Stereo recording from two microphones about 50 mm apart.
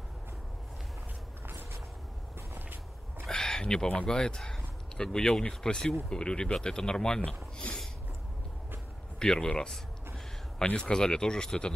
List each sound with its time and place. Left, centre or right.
2.5 s vehicle: right
3.3 s a sound: centre
3.9 s speech: centre
9.2 s speech: centre